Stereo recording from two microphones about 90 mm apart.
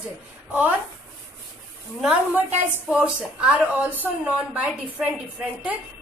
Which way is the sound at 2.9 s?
10° right (ahead or behind).